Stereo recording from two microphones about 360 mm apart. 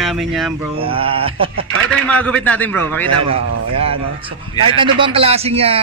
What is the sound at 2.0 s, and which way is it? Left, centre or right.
Speech, centre.